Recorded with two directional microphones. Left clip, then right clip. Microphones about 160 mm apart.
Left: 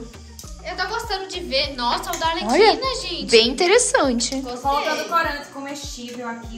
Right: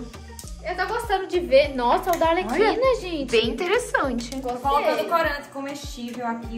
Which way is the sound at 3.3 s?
5° left (ahead or behind).